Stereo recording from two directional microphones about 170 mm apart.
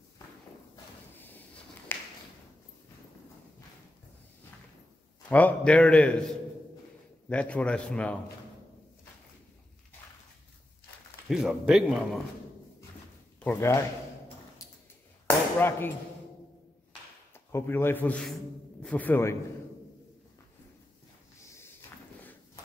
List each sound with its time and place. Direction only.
1.1 s a sound: 10° left (ahead or behind)
5.3 s a man's voice: 10° left (ahead or behind)
7.2 s a man's voice: 5° left (ahead or behind)
11.2 s speech: centre (ahead or behind)
13.4 s a man's voice: 15° left (ahead or behind)
15.2 s speech: 10° left (ahead or behind)
17.5 s a man's voice: 15° left (ahead or behind)
21.4 s a sound: 15° left (ahead or behind)